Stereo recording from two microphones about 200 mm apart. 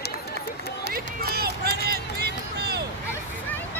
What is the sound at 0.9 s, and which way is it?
Run, 50° right (ahead or behind).